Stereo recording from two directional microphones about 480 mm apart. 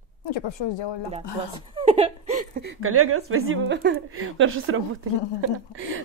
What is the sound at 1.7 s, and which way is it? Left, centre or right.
Speech, centre.